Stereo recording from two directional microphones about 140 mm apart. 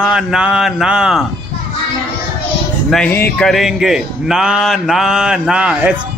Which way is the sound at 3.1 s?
15° left (ahead or behind).